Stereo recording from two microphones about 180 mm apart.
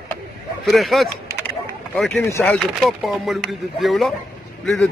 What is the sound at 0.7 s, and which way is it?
A man's voice, centre (ahead or behind).